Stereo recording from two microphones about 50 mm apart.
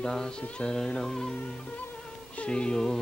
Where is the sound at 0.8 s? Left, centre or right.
Centre.